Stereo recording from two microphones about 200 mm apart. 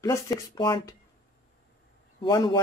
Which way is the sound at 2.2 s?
25° left (ahead or behind).